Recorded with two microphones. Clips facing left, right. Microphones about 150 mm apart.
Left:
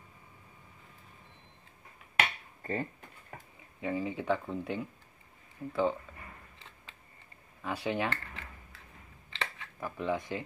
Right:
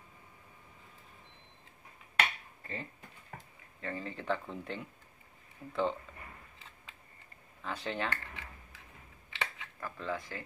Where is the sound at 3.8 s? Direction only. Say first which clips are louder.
Left 6 dB; 10° left (ahead or behind).